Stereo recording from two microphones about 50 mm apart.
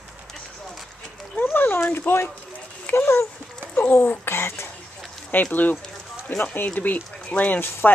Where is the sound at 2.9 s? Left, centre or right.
Left.